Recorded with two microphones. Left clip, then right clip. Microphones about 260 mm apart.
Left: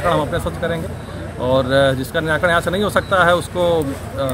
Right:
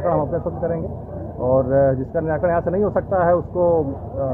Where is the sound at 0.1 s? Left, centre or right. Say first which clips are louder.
Left 2 dB; left.